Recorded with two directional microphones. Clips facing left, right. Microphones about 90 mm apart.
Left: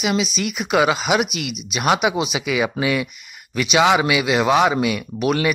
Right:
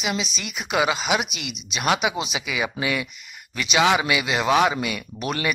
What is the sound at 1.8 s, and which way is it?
Speech, 20° left (ahead or behind).